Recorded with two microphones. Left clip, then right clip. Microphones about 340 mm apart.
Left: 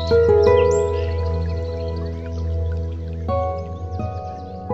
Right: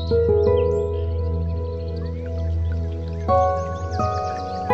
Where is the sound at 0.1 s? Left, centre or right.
Left.